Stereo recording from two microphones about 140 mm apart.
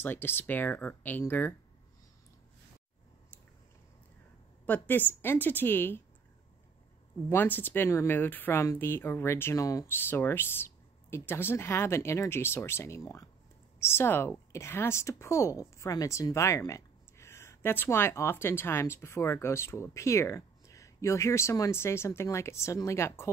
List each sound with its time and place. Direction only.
0.0 s speech: 15° left (ahead or behind)
4.6 s speech: 15° left (ahead or behind)
7.2 s a woman's voice: 15° left (ahead or behind)